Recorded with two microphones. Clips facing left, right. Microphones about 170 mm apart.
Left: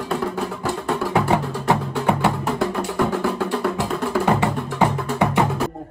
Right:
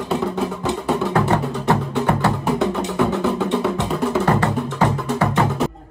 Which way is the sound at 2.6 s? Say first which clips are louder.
Even; centre (ahead or behind).